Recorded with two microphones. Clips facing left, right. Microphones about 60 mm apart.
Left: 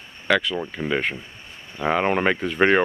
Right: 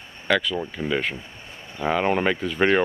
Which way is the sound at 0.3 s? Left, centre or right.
Centre.